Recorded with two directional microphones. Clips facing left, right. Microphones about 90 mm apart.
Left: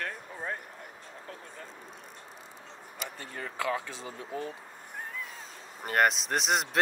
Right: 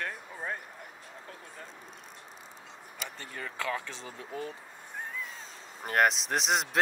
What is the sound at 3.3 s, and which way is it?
Speech, 30° left (ahead or behind).